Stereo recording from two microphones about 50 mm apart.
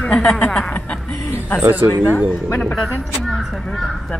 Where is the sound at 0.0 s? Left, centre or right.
Left.